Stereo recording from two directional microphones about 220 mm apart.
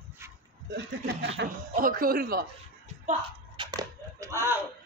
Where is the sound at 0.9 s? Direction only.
55° right (ahead or behind).